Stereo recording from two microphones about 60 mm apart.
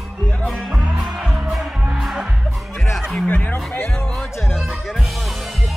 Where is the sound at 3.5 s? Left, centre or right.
Left.